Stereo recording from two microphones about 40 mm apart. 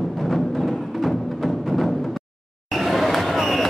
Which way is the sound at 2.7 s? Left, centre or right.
Centre.